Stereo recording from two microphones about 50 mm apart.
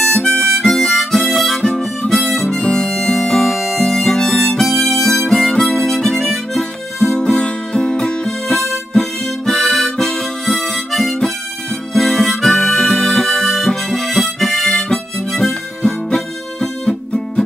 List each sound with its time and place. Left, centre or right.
0.0 s harmonica: centre
3.5 s harmonica: centre
3.8 s harmonica: centre
9.5 s music: centre
9.8 s harmonica: centre
16.6 s music: centre